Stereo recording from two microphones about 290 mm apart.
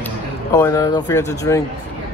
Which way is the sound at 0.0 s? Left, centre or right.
Centre.